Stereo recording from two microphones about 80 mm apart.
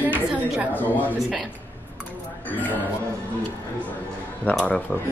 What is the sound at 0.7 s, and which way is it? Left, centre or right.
Speech, left.